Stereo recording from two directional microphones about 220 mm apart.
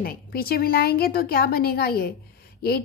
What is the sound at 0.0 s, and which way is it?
A woman's voice, 40° left (ahead or behind).